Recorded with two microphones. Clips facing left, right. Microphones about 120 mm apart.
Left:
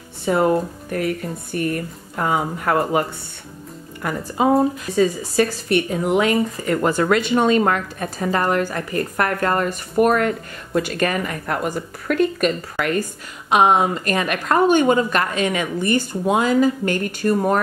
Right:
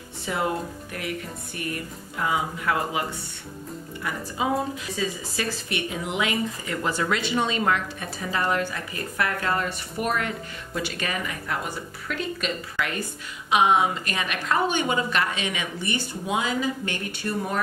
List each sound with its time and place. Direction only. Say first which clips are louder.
0.2 s a woman's voice: left 9 dB; 45° left (ahead or behind)